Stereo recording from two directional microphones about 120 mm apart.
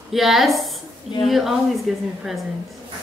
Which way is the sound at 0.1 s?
Centre (ahead or behind).